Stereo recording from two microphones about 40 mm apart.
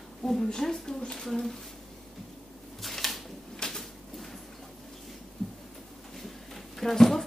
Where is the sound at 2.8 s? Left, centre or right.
Centre.